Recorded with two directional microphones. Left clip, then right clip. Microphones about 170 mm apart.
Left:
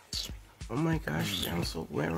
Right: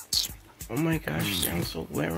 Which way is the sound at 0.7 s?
15° left (ahead or behind).